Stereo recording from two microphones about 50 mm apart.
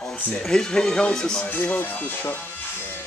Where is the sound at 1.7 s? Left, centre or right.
Left.